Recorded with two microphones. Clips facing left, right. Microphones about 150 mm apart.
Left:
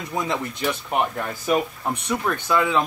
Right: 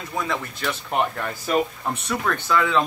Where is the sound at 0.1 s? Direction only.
20° left (ahead or behind).